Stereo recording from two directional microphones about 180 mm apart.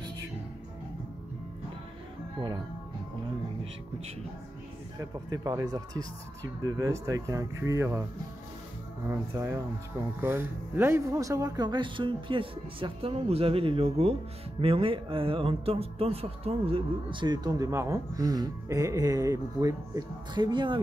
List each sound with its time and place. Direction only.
4.9 s speech: 20° right (ahead or behind)
9.0 s speech: 15° right (ahead or behind)